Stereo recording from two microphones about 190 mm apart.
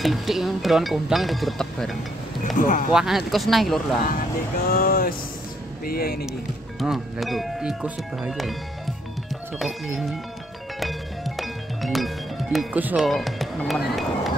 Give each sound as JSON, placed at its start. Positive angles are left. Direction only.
{"t": 0.0, "sound": "speech", "side_deg": 0}
{"t": 2.4, "sound": "speech", "side_deg": 45}
{"t": 2.9, "sound": "speech", "side_deg": -5}
{"t": 4.6, "sound": "speech", "side_deg": 50}
{"t": 6.8, "sound": "speech", "side_deg": 0}
{"t": 10.8, "sound": "music", "side_deg": 0}